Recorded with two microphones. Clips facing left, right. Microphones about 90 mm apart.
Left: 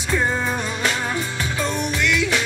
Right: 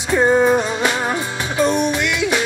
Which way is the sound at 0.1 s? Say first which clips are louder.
Right 9 dB; 25° right (ahead or behind).